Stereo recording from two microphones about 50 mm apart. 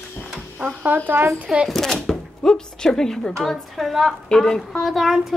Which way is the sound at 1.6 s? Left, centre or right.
Centre.